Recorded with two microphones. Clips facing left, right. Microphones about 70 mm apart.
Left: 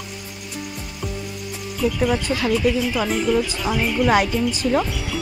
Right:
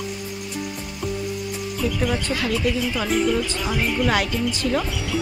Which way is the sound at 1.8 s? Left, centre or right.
Centre.